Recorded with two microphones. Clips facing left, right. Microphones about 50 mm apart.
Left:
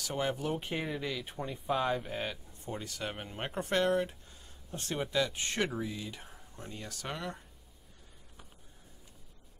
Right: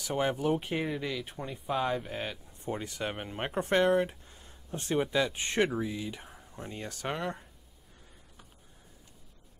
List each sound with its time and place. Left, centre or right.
0.0 s speech: right; by 2.3 s centre
2.6 s speech: right
6.5 s speech: right